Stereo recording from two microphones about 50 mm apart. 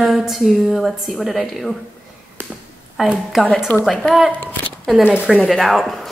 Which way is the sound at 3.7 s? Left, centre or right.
Left.